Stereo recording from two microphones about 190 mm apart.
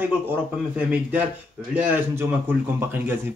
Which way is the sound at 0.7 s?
5° right (ahead or behind).